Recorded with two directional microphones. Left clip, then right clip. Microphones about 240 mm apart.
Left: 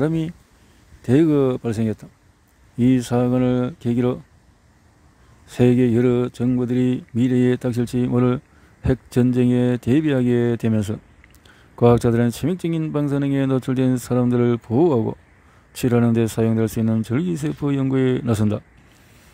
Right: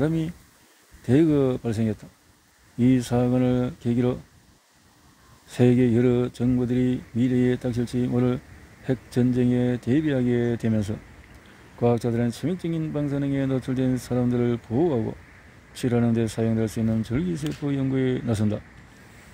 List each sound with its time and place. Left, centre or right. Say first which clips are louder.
0.0 s speech: left 3 dB; left
5.5 s speech: left 3 dB; left